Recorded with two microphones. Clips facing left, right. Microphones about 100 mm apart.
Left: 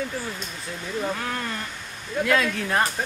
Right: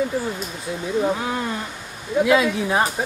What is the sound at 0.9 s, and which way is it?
Speech, 15° right (ahead or behind).